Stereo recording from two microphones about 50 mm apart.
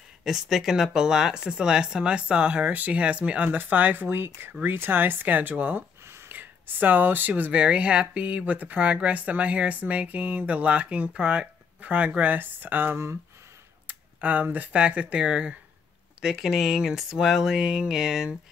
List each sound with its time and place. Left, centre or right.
0.2 s speech: centre; by 3.4 s right
3.4 s speech: right
4.2 s speech: right
6.0 s a sound: right
6.3 s speech: right
7.6 s speech: right
12.9 s speech: right
13.8 s speech: right; by 18.3 s centre